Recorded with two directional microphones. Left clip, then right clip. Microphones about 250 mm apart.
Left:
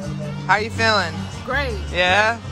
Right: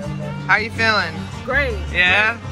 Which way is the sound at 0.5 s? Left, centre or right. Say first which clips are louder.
Right 1 dB; centre.